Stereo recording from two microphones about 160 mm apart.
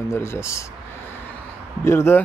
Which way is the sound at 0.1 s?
15° left (ahead or behind).